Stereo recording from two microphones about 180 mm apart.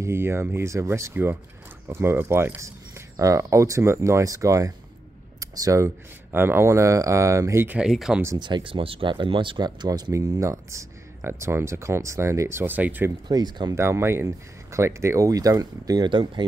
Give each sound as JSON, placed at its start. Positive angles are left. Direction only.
{"t": 0.0, "sound": "speech", "side_deg": -15}
{"t": 8.2, "sound": "speech", "side_deg": -20}
{"t": 13.3, "sound": "speech", "side_deg": -20}